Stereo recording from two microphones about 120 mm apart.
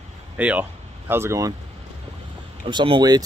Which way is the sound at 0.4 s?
10° right (ahead or behind).